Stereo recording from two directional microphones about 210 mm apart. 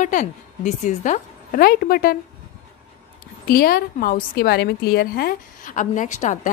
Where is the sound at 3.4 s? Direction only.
45° left (ahead or behind).